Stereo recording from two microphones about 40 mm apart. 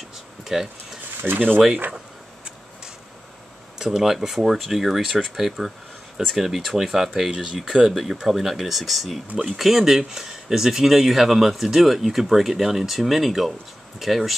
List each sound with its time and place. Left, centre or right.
0.5 s speech: centre
1.2 s speech: right
3.7 s speech: centre
7.8 s speech: centre